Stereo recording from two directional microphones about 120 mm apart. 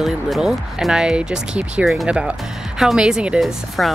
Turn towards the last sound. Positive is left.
turn(degrees=0)  # may be behind; listen again after turning